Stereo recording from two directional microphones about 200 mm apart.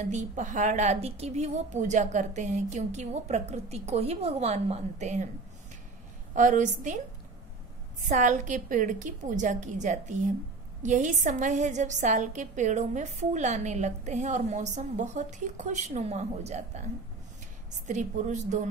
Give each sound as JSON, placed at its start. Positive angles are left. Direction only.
{"t": 0.0, "sound": "a woman's voice", "side_deg": -35}
{"t": 6.3, "sound": "a woman's voice", "side_deg": -40}
{"t": 8.0, "sound": "a woman's voice", "side_deg": -40}
{"t": 17.8, "sound": "a woman's voice", "side_deg": -40}